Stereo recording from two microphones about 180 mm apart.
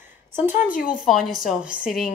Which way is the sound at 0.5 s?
50° left (ahead or behind).